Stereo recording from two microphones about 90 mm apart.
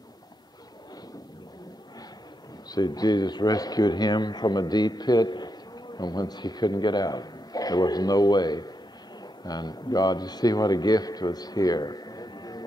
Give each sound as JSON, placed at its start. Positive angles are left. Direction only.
{"t": 2.7, "sound": "a man's voice", "side_deg": 45}